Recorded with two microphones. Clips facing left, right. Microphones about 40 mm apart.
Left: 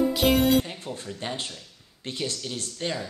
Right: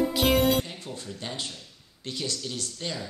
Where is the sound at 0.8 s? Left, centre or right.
Left.